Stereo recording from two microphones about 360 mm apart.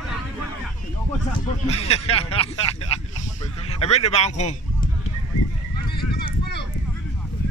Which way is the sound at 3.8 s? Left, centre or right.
Centre.